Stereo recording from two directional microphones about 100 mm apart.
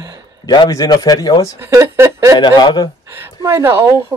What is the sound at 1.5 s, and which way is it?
Speech, 25° right (ahead or behind).